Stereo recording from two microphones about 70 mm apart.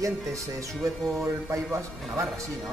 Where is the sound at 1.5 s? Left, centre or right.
Right.